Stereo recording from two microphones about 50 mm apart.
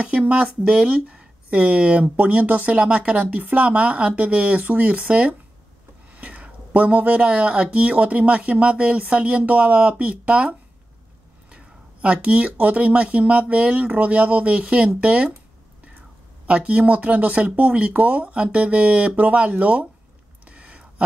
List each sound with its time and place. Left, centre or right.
0.2 s speech: right
11.5 s speech: right
16.4 s speech: right
20.4 s a sound: right